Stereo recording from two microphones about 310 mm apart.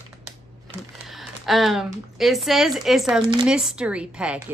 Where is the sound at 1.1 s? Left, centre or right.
Centre.